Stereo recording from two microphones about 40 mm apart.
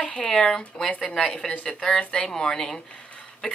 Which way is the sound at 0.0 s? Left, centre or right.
Left.